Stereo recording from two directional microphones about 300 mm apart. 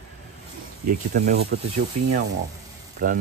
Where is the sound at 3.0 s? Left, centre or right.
Right.